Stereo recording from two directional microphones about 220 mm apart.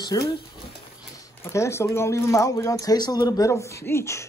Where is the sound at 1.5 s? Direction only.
15° left (ahead or behind).